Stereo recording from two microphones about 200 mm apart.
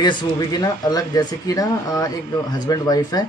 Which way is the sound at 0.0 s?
20° left (ahead or behind).